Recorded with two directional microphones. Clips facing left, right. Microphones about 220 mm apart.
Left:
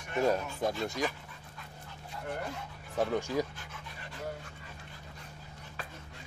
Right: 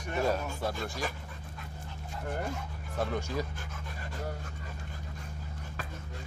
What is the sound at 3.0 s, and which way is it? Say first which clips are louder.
Speech: left 3 dB; 10° left (ahead or behind).